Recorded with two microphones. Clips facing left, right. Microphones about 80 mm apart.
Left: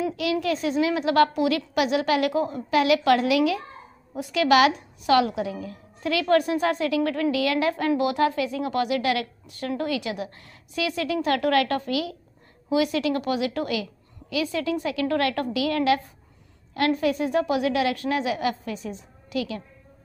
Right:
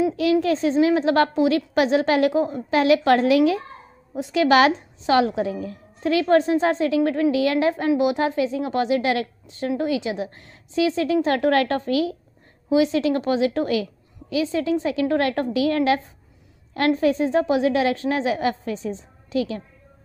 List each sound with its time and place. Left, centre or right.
0.1 s a woman's voice: right